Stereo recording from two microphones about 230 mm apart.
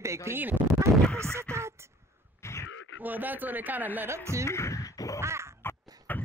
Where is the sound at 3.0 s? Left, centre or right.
Centre.